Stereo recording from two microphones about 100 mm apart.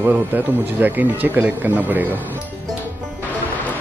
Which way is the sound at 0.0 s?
15° right (ahead or behind).